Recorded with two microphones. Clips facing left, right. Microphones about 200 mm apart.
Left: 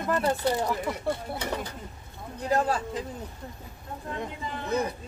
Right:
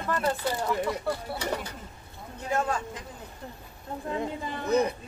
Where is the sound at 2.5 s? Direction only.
35° left (ahead or behind).